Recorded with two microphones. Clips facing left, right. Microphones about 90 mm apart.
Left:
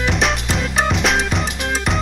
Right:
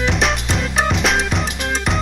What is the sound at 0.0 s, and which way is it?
Music, centre (ahead or behind).